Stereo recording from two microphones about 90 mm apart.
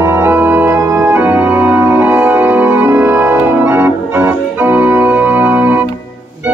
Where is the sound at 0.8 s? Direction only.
40° right (ahead or behind).